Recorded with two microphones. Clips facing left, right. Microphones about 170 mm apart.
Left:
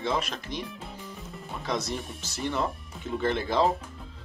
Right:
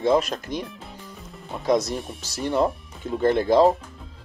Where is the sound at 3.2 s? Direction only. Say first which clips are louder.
Right 8 dB; 45° right (ahead or behind).